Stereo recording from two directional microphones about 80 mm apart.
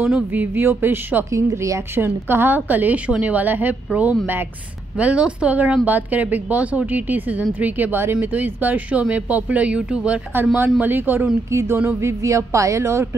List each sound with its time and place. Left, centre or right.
0.0 s a woman's voice: right
1.3 s a woman's voice: right; by 10.2 s centre
10.3 s a woman's voice: right